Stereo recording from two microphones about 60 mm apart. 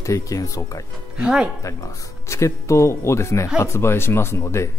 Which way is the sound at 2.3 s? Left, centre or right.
Left.